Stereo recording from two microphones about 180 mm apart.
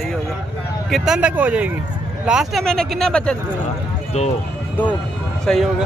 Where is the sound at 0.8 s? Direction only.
Centre (ahead or behind).